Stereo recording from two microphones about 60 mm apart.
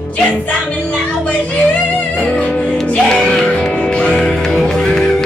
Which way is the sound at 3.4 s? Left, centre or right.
Centre.